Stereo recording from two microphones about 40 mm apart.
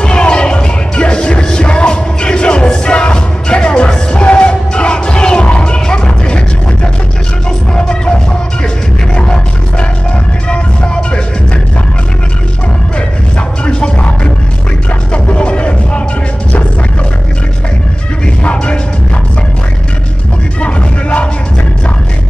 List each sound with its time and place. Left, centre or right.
0.0 s music: left
10.5 s vehicle: left
13.7 s music: left
18.2 s music: left
20.6 s music: left